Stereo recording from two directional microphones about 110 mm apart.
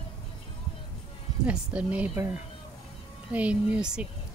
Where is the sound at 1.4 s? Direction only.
10° right (ahead or behind).